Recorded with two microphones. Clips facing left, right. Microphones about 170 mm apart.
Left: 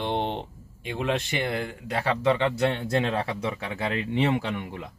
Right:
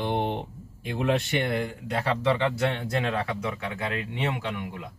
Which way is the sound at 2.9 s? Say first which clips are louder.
Left 2 dB; 30° left (ahead or behind).